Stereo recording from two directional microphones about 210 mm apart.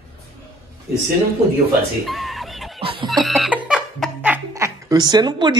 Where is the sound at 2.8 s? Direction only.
25° right (ahead or behind).